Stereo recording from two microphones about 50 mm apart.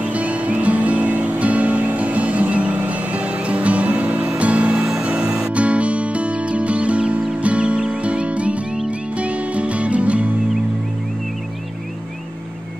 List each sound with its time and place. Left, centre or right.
0.0 s music: right